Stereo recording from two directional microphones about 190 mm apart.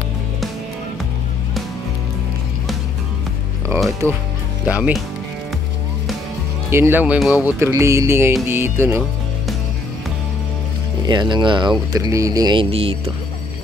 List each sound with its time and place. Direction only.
4.0 s speech: 15° right (ahead or behind)
6.7 s speech: 10° right (ahead or behind)
11.1 s speech: 25° right (ahead or behind)